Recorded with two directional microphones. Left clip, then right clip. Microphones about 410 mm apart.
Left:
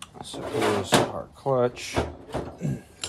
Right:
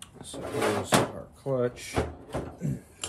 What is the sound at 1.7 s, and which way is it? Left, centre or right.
Speech, centre.